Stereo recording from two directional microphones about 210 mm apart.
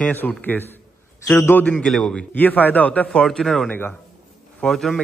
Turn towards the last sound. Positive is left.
turn(degrees=0)  # may be behind; listen again after turning